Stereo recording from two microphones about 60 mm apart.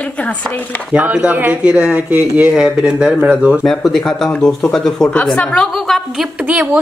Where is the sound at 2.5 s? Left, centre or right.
Centre.